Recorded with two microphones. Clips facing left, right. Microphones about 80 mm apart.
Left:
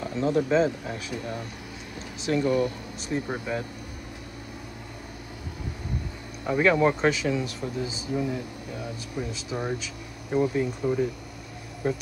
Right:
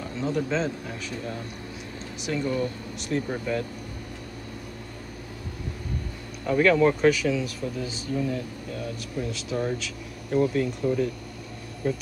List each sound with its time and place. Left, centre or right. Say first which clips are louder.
0.4 s speech: left 6 dB; centre
6.4 s speech: right 1 dB; centre
7.8 s speech: even; centre